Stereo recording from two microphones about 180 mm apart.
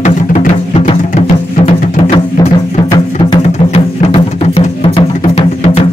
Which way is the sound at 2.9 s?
30° left (ahead or behind).